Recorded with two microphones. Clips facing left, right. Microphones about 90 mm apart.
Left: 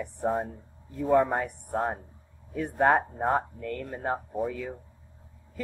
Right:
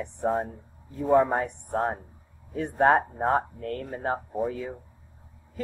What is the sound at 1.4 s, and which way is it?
Speech, centre (ahead or behind).